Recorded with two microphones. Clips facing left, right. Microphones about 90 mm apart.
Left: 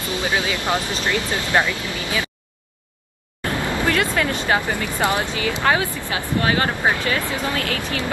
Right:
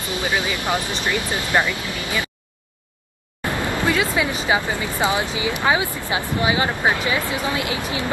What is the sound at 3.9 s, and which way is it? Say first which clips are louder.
Speech: even; 10° right (ahead or behind).